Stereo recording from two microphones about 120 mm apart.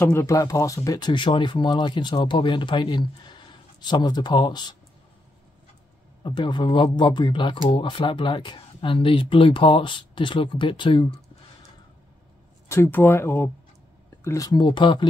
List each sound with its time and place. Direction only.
0.0 s speech: 20° left (ahead or behind); by 4.7 s 35° left (ahead or behind)
6.2 s speech: 40° left (ahead or behind)
12.6 s speech: 20° left (ahead or behind); by 15.0 s 40° left (ahead or behind)